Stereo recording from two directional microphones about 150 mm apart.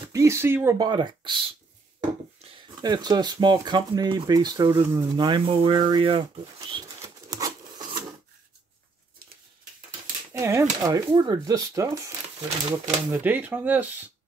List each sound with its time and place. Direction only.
0.1 s speech: 20° right (ahead or behind)
0.7 s speech: 30° right (ahead or behind)
2.7 s speech: 25° right (ahead or behind)
7.0 s a sound: 20° right (ahead or behind)
10.3 s speech: 20° right (ahead or behind)